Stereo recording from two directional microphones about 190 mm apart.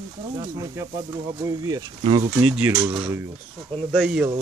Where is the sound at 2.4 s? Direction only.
5° right (ahead or behind).